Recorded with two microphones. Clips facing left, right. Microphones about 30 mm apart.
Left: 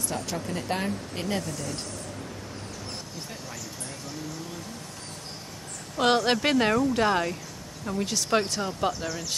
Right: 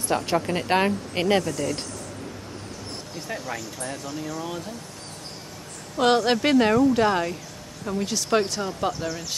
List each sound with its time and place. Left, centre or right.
0.1 s speech: right
5.9 s speech: centre